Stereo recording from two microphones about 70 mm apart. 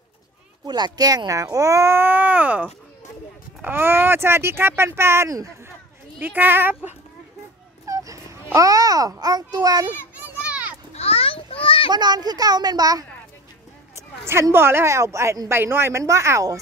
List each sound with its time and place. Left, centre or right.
0.7 s speech: right
6.1 s speech: right
7.8 s fowl: right
8.5 s a child's voice: right
10.2 s children playing: right
11.9 s speech: right
13.9 s a sound: right
14.5 s speech: right
16.0 s speech: right